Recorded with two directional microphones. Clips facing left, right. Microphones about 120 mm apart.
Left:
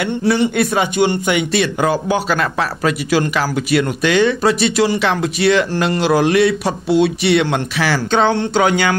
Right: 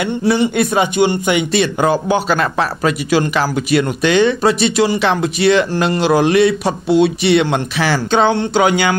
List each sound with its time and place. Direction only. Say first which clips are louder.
0.0 s a man's voice: right 1 dB; 15° right (ahead or behind)